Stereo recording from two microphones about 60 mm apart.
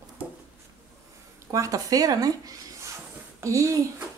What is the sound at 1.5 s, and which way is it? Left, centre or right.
Speech, right.